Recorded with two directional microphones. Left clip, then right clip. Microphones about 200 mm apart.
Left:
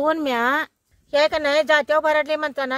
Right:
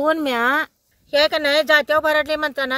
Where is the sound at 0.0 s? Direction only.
5° right (ahead or behind).